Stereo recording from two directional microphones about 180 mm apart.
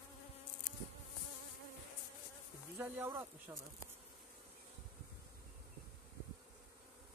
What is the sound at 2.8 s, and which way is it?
Speech, 15° right (ahead or behind).